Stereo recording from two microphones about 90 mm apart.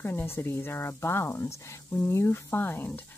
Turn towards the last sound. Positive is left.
turn(degrees=20)  # may be behind; listen again after turning